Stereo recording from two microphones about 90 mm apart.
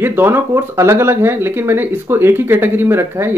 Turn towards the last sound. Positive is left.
turn(degrees=-25)  # may be behind; listen again after turning